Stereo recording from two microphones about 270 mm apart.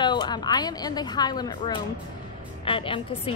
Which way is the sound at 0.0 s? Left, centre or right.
Centre.